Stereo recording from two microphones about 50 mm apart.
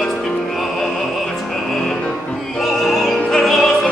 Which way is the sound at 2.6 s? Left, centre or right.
Centre.